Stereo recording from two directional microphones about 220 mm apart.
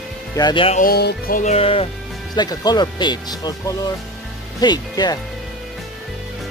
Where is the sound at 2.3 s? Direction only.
20° left (ahead or behind).